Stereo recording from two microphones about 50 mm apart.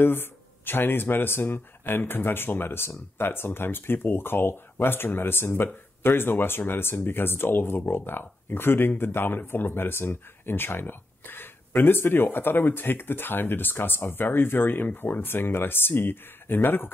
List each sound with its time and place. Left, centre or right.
0.0 s speech: left